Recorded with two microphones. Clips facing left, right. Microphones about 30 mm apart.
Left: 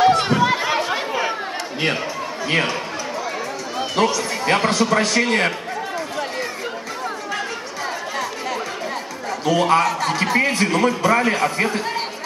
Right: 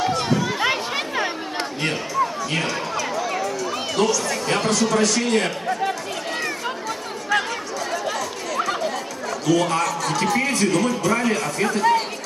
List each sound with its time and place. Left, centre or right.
0.0 s chatter: left
3.9 s a man's voice: left
9.5 s a man's voice: left